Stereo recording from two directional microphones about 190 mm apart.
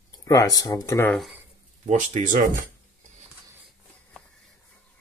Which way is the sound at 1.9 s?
40° right (ahead or behind).